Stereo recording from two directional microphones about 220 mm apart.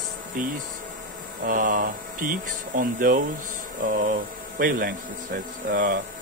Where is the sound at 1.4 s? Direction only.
40° right (ahead or behind).